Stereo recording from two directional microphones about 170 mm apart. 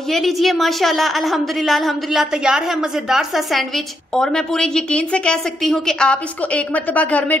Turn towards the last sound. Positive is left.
turn(degrees=10)  # may be behind; listen again after turning